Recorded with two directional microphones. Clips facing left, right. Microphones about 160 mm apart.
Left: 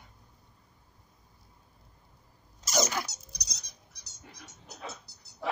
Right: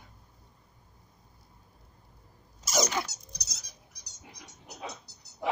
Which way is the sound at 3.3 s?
5° right (ahead or behind).